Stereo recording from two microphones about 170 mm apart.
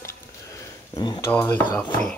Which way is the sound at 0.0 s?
20° left (ahead or behind).